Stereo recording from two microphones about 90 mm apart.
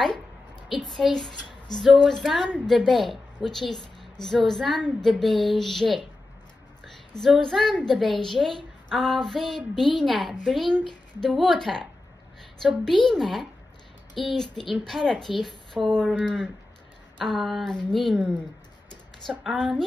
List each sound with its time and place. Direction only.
0.7 s a woman's voice: centre (ahead or behind)
4.0 s a sound: 5° left (ahead or behind)
4.5 s a woman's voice: 5° left (ahead or behind)
16.2 s a woman's voice: 10° left (ahead or behind)
19.4 s a woman's voice: 5° right (ahead or behind)